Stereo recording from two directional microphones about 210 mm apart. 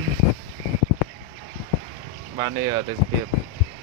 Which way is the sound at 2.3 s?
20° right (ahead or behind).